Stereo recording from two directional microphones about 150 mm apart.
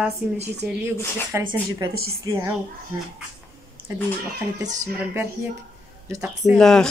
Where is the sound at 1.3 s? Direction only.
15° right (ahead or behind).